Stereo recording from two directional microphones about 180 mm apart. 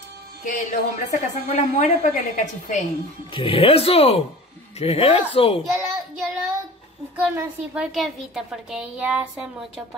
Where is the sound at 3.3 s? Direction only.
30° left (ahead or behind).